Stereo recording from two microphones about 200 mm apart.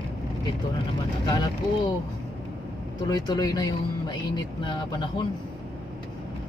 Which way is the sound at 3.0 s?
20° left (ahead or behind).